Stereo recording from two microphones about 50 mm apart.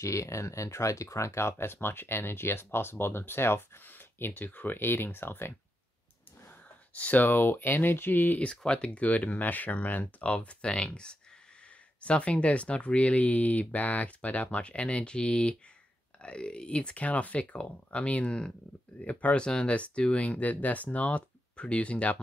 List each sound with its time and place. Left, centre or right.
0.0 s speech: left
4.3 s speech: left
6.9 s speech: left
8.4 s speech: left